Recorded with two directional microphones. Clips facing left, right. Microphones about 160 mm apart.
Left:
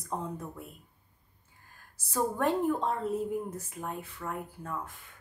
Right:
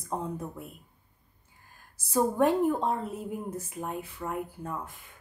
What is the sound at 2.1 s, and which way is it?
Speech, 10° right (ahead or behind).